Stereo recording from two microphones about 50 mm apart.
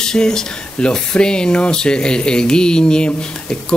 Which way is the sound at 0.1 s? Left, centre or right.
Centre.